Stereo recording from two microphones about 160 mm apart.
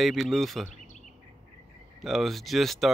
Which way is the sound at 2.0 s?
Centre (ahead or behind).